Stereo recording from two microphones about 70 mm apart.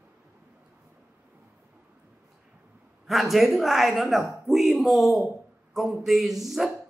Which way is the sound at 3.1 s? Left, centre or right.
Centre.